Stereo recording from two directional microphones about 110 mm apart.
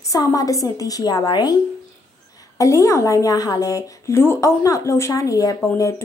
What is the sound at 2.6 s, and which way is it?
A woman's voice, 30° left (ahead or behind).